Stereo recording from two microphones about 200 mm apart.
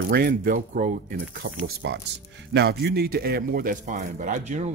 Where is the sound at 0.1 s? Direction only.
50° right (ahead or behind).